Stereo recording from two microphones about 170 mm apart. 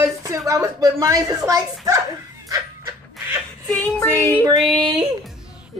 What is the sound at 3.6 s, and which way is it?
Music, centre (ahead or behind).